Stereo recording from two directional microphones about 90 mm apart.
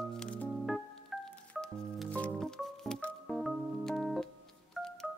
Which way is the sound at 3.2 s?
Centre (ahead or behind).